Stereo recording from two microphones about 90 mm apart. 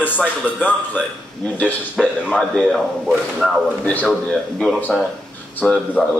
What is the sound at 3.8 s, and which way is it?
Speech, 15° left (ahead or behind).